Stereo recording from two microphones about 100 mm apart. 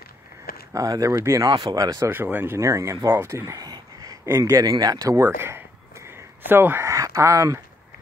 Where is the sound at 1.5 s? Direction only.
45° right (ahead or behind).